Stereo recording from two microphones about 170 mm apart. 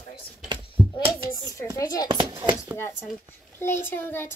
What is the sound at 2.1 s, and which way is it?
Speech, 30° right (ahead or behind).